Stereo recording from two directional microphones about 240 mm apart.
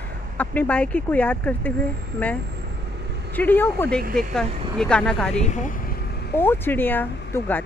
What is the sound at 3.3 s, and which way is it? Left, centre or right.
Speech, centre.